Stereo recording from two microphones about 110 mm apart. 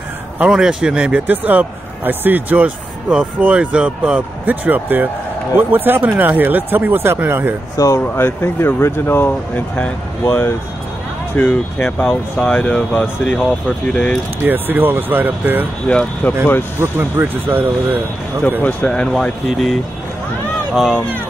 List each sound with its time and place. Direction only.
0.4 s speech: 5° right (ahead or behind)
7.7 s speech: 30° left (ahead or behind)
8.0 s speech: 20° left (ahead or behind)
14.4 s speech: 20° right (ahead or behind)
15.9 s speech: 10° left (ahead or behind)
16.8 s speech: 20° right (ahead or behind)
18.6 s speech: 10° left (ahead or behind)